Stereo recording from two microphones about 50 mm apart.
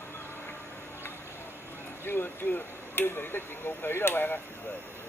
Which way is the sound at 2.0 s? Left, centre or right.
Left.